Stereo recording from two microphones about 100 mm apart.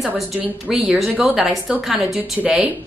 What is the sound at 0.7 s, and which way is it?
Speech, centre (ahead or behind).